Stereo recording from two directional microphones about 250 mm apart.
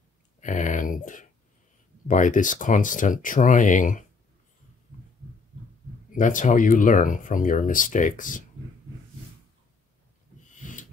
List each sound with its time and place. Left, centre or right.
0.4 s a sound: left
2.0 s speech: left
6.1 s speech: left